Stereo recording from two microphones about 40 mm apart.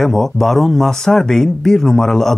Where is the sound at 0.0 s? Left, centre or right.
Centre.